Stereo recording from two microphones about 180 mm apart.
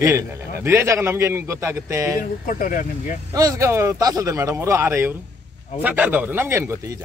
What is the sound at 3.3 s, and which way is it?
A man's voice, 20° right (ahead or behind).